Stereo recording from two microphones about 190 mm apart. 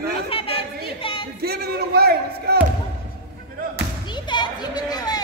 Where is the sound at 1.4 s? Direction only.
55° right (ahead or behind).